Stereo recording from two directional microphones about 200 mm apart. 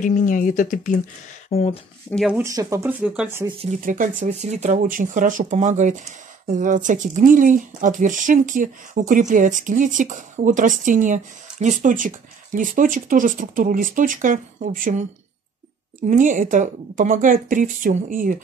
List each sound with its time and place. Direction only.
0.0 s speech: 40° left (ahead or behind)
2.0 s speech: 5° left (ahead or behind)
2.3 s speech: 15° right (ahead or behind)
3.8 s speech: 40° right (ahead or behind)
16.1 s speech: 40° right (ahead or behind)